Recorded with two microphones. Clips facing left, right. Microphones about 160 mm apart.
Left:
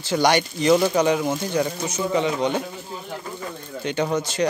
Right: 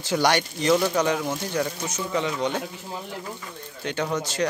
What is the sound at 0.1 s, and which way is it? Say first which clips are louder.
Speech: left 3 dB; centre (ahead or behind).